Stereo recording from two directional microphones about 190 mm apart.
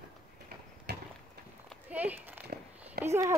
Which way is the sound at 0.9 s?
60° right (ahead or behind).